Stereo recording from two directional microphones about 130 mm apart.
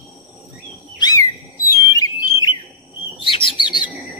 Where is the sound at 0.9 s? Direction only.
30° left (ahead or behind).